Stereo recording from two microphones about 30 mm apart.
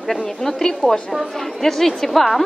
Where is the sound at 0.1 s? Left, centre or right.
Centre.